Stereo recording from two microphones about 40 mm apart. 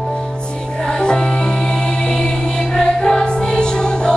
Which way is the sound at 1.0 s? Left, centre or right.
Left.